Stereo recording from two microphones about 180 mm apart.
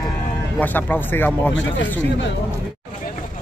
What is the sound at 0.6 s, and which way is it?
Speech, 10° left (ahead or behind).